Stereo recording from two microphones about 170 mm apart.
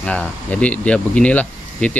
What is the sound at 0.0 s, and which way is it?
Speech, 5° left (ahead or behind).